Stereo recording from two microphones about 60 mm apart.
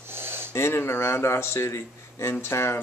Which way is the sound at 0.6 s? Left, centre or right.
Left.